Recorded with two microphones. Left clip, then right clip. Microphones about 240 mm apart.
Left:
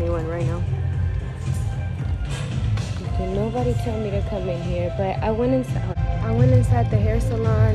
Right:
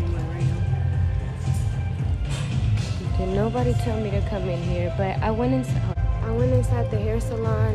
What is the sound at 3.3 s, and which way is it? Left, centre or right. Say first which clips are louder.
Speech: right 1 dB; centre.